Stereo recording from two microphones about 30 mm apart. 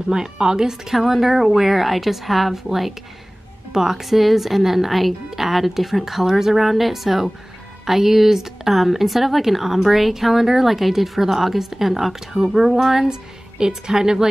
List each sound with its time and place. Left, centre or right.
0.1 s a woman's voice: right
0.9 s a woman's voice: centre